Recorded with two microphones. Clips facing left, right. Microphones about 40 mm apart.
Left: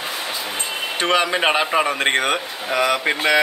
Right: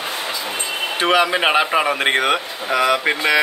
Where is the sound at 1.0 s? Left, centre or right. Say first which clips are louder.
Right 2 dB; centre.